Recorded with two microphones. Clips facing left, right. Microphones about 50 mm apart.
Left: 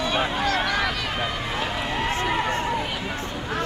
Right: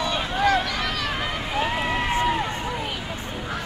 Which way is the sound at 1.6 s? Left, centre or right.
Right.